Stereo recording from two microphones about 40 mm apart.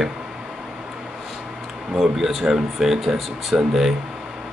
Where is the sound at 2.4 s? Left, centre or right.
Centre.